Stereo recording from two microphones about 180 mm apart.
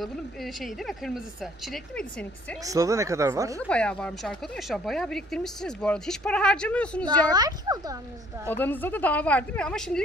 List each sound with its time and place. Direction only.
0.0 s speech: centre (ahead or behind)
2.6 s speech: 20° right (ahead or behind)
3.6 s speech: 5° left (ahead or behind)
7.3 s a child's voice: 20° right (ahead or behind)
8.5 s speech: 10° left (ahead or behind)